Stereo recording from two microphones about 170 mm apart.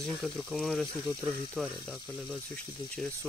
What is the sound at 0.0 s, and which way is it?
Speech, centre (ahead or behind).